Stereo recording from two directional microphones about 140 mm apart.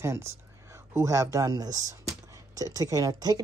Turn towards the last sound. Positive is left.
turn(degrees=-25)  # may be behind; listen again after turning